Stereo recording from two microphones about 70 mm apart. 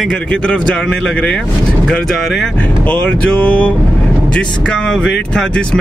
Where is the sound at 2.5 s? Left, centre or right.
Centre.